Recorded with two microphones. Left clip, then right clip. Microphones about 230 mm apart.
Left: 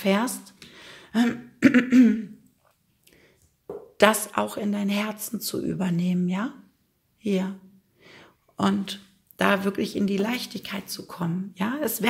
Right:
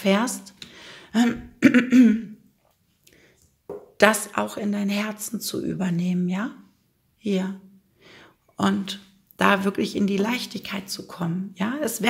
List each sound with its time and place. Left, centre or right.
0.0 s a woman's voice: centre
0.7 s throat clearing: centre
3.1 s a sound: centre
4.3 s a woman's voice: centre